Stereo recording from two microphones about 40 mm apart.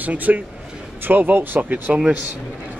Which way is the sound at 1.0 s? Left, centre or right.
Right.